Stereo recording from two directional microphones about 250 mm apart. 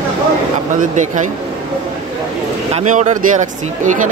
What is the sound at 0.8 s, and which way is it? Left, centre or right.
Speech, right.